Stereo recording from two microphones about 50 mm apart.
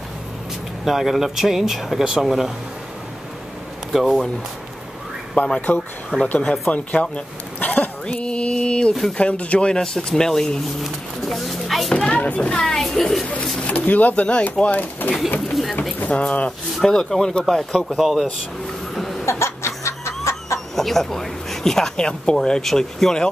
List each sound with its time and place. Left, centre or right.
0.8 s speech: centre
3.9 s speech: centre
5.4 s speech: left
6.1 s a child's voice: centre
6.7 s a sound: left
9.1 s speech: left
9.8 s a child's voice: centre
10.8 s speech: centre
11.9 s a child's voice: left; by 13.3 s centre
13.6 s a child's voice: left
17.8 s speech: centre
18.9 s cough: centre
19.2 s snicker: left
20.5 s speech: centre